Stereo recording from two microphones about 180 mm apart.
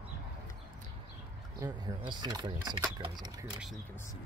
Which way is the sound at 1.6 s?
20° right (ahead or behind).